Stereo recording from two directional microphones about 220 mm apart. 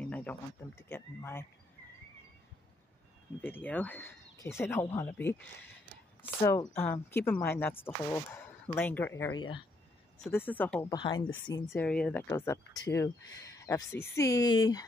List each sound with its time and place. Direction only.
0.0 s a sound: 5° left (ahead or behind)
3.3 s speech: 10° left (ahead or behind)
10.1 s speech: 5° left (ahead or behind)
11.0 s speech: 20° left (ahead or behind)